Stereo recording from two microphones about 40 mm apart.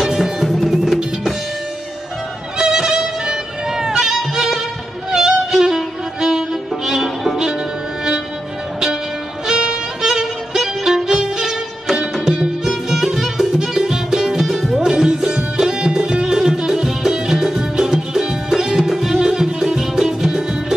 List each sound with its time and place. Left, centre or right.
0.0 s music: centre
2.6 s music: centre
9.5 s violin: centre
12.6 s music: centre